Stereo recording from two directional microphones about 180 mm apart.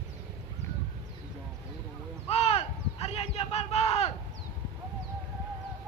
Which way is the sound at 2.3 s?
35° left (ahead or behind).